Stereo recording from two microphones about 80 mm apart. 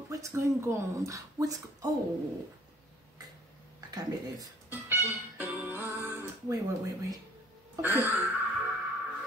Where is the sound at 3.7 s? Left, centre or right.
Right.